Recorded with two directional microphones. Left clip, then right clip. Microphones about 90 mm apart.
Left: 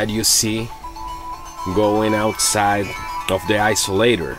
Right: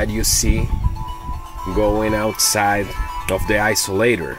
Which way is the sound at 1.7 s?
15° left (ahead or behind).